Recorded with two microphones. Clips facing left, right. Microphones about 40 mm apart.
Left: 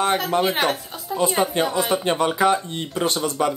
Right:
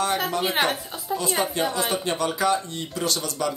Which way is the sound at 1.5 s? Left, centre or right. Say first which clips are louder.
Left 4 dB; left.